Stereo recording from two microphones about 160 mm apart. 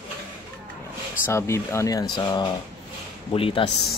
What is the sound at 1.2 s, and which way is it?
Speech, 15° left (ahead or behind).